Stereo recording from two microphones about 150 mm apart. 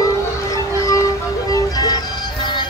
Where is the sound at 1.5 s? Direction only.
25° left (ahead or behind).